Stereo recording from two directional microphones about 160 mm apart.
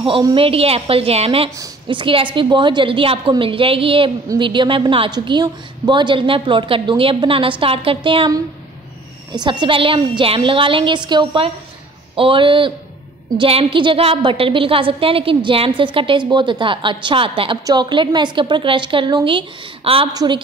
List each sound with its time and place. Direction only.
0.0 s a woman's voice: 30° right (ahead or behind)
9.3 s a woman's voice: 25° right (ahead or behind)
20.1 s speech: 25° right (ahead or behind)